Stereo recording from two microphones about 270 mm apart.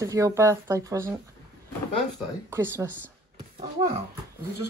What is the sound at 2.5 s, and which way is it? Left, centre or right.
Speech, centre.